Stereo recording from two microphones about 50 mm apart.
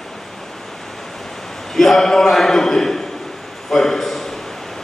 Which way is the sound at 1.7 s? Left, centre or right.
Centre.